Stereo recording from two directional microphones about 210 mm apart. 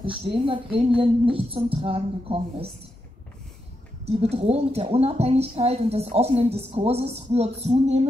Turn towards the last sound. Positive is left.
turn(degrees=-30)  # may be behind; listen again after turning